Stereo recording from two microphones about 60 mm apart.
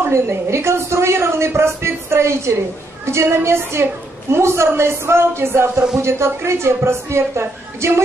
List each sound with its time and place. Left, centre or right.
0.1 s a woman's voice: right